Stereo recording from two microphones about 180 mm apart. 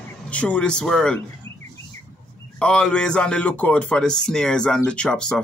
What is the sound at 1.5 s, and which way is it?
Chirp, 15° left (ahead or behind).